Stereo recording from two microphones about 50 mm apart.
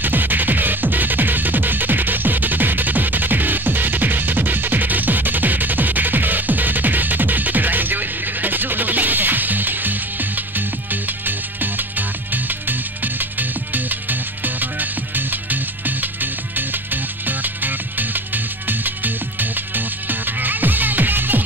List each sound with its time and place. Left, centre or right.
0.0 s music: right